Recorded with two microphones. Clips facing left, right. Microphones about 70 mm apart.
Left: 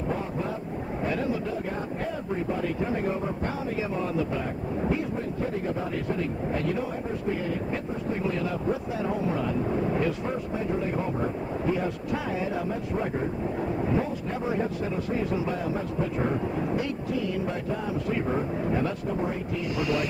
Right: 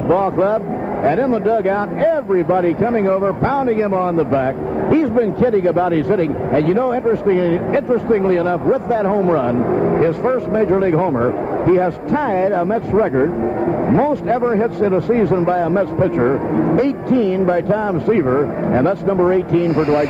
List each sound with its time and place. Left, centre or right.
0.1 s speech: right
1.0 s a man's voice: right
19.7 s a man's voice: right